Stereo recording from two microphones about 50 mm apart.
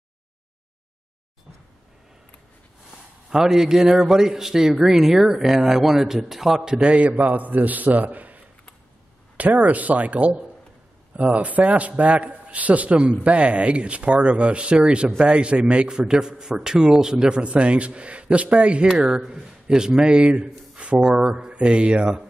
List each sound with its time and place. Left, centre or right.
3.3 s speech: centre; by 8.4 s right
9.4 s a man's voice: right